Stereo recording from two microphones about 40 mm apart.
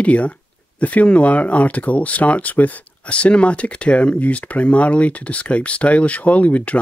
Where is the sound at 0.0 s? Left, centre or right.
Left.